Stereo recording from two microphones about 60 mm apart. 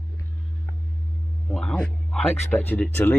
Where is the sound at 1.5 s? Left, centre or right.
Centre.